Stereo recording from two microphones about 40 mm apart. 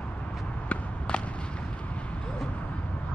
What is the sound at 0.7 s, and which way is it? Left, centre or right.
Walk, left.